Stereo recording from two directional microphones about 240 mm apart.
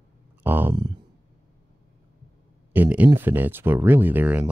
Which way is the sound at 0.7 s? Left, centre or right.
Centre.